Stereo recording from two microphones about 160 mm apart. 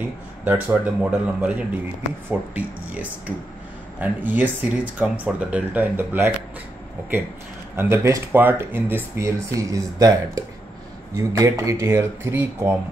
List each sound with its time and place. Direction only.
0.0 s speech: 10° right (ahead or behind)
7.7 s speech: 20° right (ahead or behind)